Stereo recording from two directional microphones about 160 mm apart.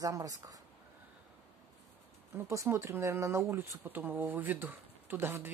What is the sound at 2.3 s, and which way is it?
Speech, 20° right (ahead or behind).